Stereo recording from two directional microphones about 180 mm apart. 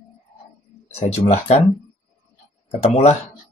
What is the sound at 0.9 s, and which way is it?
Speech, 35° left (ahead or behind).